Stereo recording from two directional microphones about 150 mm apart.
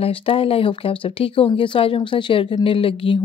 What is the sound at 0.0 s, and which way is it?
Speech, 40° left (ahead or behind).